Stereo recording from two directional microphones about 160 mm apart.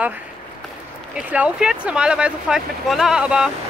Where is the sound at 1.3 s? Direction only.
5° right (ahead or behind).